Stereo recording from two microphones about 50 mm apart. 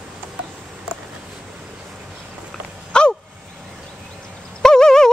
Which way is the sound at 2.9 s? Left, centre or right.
Centre.